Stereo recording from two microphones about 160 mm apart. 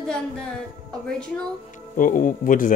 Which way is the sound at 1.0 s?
5° left (ahead or behind).